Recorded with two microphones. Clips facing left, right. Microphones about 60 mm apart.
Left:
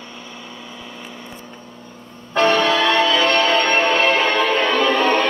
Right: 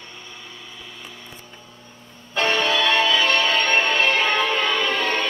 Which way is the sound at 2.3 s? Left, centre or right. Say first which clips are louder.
Left 5 dB; left.